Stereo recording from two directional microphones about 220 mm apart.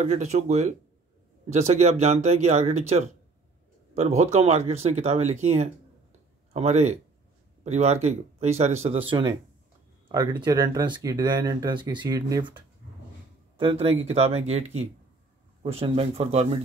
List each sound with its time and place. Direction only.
0.0 s speech: 30° right (ahead or behind)